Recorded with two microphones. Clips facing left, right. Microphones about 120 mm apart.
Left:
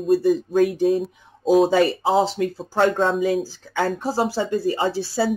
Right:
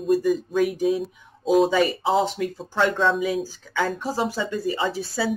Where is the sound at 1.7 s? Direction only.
40° left (ahead or behind).